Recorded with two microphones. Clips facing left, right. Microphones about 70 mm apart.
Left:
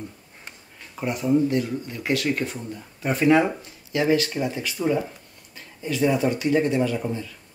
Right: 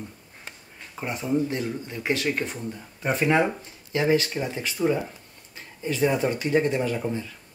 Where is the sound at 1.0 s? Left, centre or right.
Right.